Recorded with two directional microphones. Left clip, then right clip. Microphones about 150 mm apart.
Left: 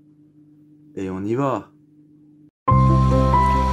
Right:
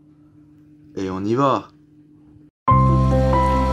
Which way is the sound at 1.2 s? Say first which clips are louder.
Right 4 dB; 30° left (ahead or behind).